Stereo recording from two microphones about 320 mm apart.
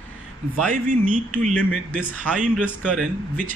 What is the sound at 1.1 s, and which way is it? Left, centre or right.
A man's voice, centre.